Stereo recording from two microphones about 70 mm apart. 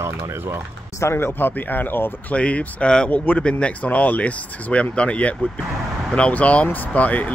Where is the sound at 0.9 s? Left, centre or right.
Left.